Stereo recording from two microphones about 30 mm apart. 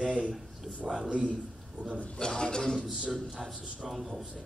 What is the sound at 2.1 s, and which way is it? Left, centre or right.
Speech, left.